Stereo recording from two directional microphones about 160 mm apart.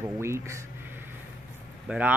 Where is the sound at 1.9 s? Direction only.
10° right (ahead or behind).